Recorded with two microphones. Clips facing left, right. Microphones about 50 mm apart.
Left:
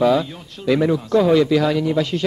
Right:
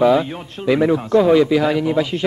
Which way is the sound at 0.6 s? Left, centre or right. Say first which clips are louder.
Right 2 dB; centre.